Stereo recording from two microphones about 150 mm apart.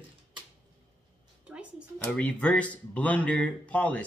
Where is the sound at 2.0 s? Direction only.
10° left (ahead or behind).